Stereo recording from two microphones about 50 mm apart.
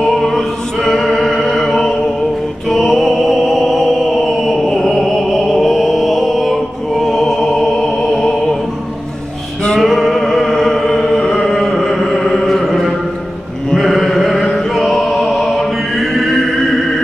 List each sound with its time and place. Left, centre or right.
0.1 s music: centre
4.3 s chant: centre
9.8 s music: centre